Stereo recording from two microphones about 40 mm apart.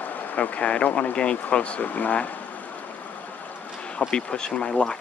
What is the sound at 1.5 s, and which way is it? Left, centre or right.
Speech, left.